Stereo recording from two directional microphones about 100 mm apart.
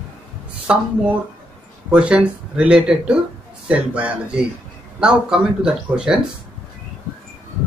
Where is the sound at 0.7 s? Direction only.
10° right (ahead or behind).